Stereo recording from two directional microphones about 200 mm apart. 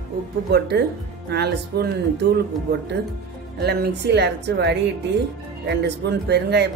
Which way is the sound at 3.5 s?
55° right (ahead or behind).